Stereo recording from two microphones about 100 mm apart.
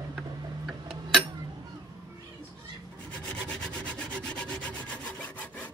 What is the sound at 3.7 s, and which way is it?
Rub, 10° left (ahead or behind).